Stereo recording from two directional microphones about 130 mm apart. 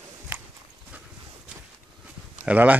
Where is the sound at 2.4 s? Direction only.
10° right (ahead or behind).